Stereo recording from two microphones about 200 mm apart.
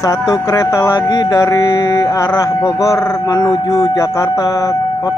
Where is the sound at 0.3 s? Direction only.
15° left (ahead or behind).